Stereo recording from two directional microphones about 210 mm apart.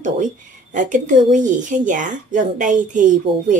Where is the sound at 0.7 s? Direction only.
35° right (ahead or behind).